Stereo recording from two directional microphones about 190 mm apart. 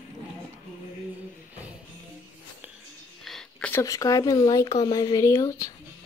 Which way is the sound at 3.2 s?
Centre (ahead or behind).